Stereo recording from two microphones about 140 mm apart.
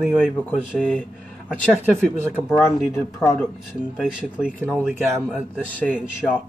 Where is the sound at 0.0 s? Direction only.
Centre (ahead or behind).